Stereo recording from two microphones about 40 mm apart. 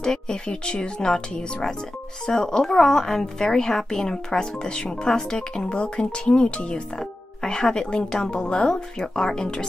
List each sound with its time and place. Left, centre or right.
0.0 s a woman's voice: centre
7.0 s a woman's voice: centre